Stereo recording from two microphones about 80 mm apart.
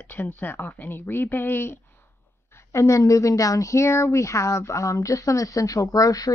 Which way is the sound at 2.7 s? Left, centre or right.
Left.